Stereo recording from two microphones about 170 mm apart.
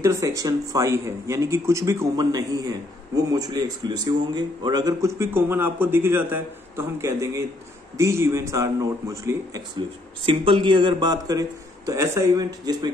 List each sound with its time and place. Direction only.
0.0 s a man's voice: 15° right (ahead or behind)